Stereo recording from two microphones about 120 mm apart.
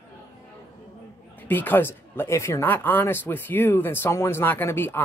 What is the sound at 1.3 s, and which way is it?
Speech, 15° left (ahead or behind).